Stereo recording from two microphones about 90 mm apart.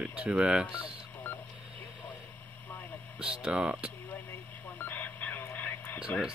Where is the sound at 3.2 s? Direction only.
10° right (ahead or behind).